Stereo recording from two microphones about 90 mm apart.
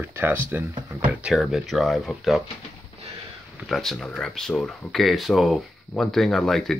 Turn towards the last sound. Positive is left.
turn(degrees=5)  # may be behind; listen again after turning